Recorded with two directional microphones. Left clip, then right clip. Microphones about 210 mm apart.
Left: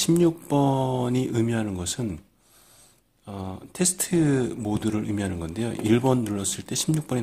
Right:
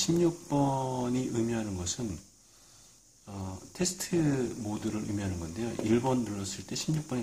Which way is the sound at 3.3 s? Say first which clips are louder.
Left 7 dB; 40° left (ahead or behind).